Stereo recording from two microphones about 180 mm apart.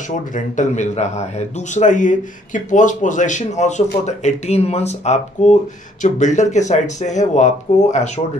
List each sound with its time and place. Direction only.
0.1 s a man's voice: 40° left (ahead or behind)